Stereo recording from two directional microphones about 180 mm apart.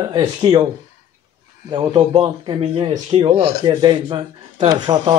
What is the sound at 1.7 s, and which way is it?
Speech, 25° right (ahead or behind).